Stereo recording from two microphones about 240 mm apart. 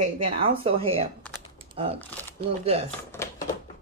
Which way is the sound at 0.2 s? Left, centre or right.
Right.